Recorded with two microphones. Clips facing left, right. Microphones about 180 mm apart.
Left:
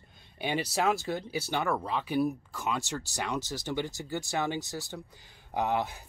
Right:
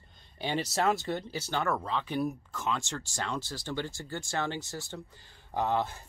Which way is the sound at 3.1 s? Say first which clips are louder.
Left 2 dB; 15° left (ahead or behind).